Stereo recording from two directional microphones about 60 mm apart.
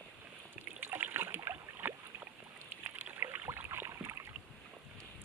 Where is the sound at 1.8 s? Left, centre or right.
Right.